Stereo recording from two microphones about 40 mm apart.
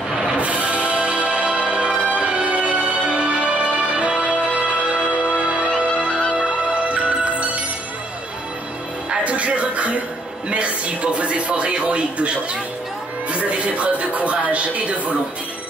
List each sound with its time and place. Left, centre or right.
0.4 s music: right
5.7 s music: left
6.3 s music: right
9.1 s music: right
10.5 s speech: right
13.3 s music: right